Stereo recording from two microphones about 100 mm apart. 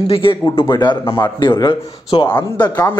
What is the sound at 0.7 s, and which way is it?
Speech, 45° left (ahead or behind).